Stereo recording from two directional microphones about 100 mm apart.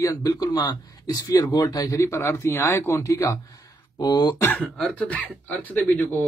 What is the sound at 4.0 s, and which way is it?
Speech, 45° left (ahead or behind).